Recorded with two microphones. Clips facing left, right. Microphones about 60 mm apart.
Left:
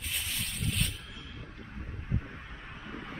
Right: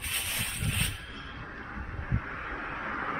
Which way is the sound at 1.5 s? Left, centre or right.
Right.